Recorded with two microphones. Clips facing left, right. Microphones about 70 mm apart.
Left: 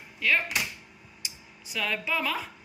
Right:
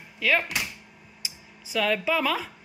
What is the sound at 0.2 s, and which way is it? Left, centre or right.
Speech, right.